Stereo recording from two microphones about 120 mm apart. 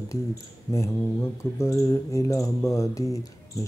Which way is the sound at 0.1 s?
25° left (ahead or behind).